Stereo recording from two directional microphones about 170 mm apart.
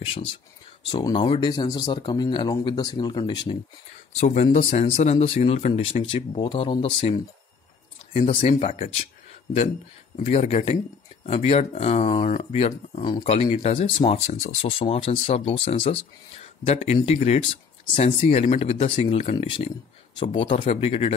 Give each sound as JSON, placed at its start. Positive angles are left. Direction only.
{"t": 0.0, "sound": "speech", "side_deg": 35}
{"t": 4.2, "sound": "speech", "side_deg": 45}
{"t": 10.1, "sound": "speech", "side_deg": 45}